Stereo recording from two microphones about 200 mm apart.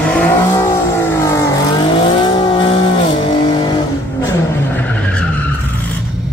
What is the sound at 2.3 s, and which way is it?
Vehicle, 25° left (ahead or behind).